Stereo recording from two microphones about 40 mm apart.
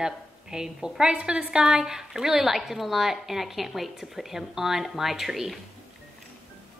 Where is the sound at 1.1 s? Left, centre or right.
Right; by 5.6 s centre.